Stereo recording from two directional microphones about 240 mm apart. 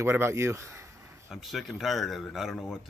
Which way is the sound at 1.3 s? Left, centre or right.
Centre.